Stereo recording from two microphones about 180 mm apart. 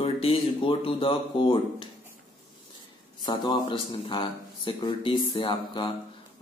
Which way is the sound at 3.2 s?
25° left (ahead or behind).